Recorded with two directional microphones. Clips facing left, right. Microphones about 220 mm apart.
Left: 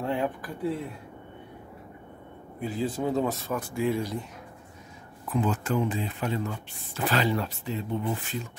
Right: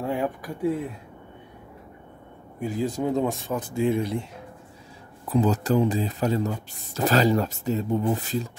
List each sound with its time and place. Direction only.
0.0 s speech: 10° right (ahead or behind)
2.6 s speech: 15° right (ahead or behind)
5.2 s speech: 35° right (ahead or behind)